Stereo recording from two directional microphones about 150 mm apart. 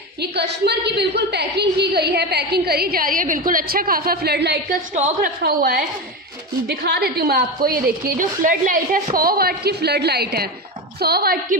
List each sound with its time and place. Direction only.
0.2 s a woman's voice: 90° right
6.7 s a woman's voice: 90° right